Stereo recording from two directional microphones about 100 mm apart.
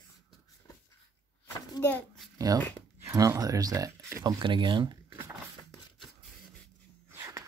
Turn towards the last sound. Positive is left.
turn(degrees=-25)  # may be behind; listen again after turning